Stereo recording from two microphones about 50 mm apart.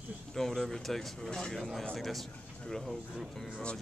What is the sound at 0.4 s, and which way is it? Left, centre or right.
Speech, centre.